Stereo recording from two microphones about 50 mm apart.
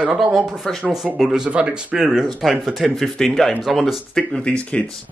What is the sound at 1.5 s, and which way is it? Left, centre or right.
Speech, right.